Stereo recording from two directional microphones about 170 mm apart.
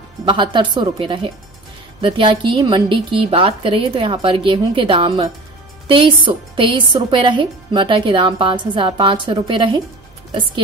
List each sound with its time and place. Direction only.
0.2 s a woman's voice: 30° right (ahead or behind)